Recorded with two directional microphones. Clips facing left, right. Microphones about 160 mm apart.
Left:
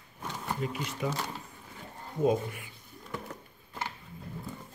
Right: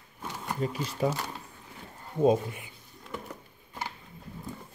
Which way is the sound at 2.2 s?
20° right (ahead or behind).